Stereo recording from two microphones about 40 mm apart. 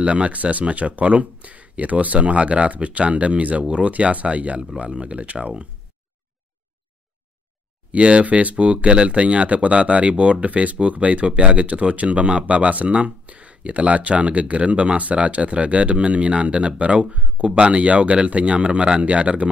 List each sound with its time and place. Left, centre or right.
0.0 s speech: right
7.9 s speech: right
8.7 s speech: right